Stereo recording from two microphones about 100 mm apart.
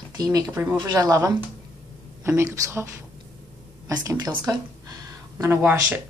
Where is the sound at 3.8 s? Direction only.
40° right (ahead or behind).